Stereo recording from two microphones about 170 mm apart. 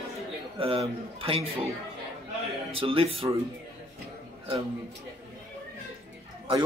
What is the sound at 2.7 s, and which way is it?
Speech, 35° right (ahead or behind).